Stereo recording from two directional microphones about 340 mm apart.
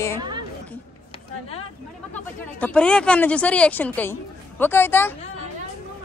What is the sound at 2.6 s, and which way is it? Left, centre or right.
Speech, centre.